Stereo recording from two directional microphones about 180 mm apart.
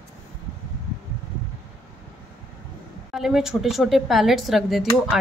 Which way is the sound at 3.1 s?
Centre (ahead or behind).